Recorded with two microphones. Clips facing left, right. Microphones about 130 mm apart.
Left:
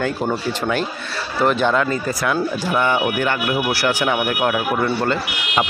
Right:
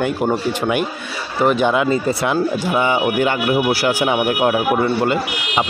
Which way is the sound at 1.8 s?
25° right (ahead or behind).